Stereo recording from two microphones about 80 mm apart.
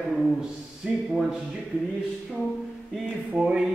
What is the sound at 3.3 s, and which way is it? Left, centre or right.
Speech, centre.